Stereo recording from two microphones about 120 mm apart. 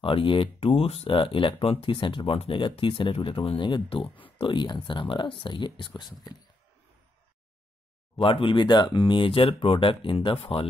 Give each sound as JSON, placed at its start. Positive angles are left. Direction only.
{"t": 0.0, "sound": "speech", "side_deg": 45}
{"t": 8.2, "sound": "speech", "side_deg": 45}